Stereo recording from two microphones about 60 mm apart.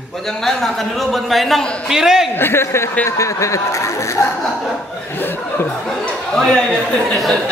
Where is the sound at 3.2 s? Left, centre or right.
Left.